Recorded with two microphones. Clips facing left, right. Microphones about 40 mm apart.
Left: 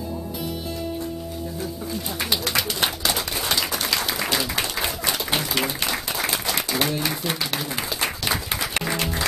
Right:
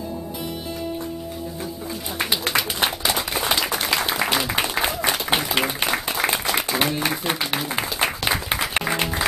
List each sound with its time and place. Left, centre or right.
2.5 s applause: centre